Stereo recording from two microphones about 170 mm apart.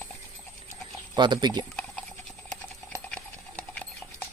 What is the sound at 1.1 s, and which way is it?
Speech, 25° right (ahead or behind).